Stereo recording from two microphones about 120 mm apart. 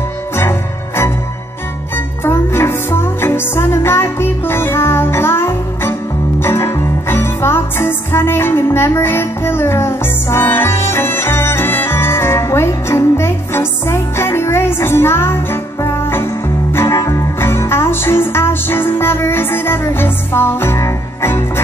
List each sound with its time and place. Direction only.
0.4 s music: 20° left (ahead or behind)
2.2 s music: 20° left (ahead or behind)